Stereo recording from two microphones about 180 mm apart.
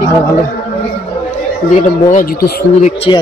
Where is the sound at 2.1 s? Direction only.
55° left (ahead or behind).